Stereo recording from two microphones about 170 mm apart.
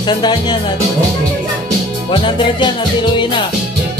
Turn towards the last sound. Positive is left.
turn(degrees=30)  # may be behind; listen again after turning